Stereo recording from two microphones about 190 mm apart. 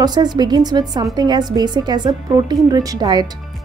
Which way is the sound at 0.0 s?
20° right (ahead or behind).